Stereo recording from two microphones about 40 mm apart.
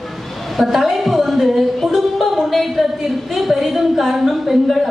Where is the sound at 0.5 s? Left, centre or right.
Centre.